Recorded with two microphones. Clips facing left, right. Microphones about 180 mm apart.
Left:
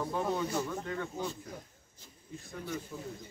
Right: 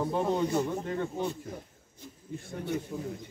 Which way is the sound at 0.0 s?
25° right (ahead or behind).